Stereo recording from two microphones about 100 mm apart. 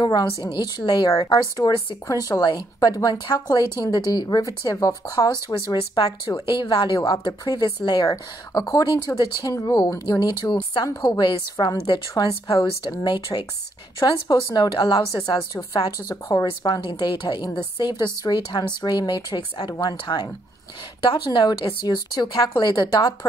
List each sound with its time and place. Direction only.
0.0 s a woman's voice: 40° left (ahead or behind)
8.1 s a woman's voice: 35° left (ahead or behind)
11.5 s a woman's voice: 35° left (ahead or behind)